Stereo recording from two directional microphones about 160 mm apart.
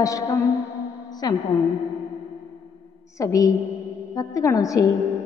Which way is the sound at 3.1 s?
20° left (ahead or behind).